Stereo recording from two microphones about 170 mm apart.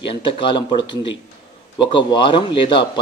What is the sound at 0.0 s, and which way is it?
A man's voice, 30° left (ahead or behind).